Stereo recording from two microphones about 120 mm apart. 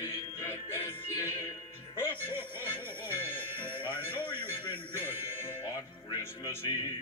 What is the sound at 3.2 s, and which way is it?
Jingle bell, 15° left (ahead or behind).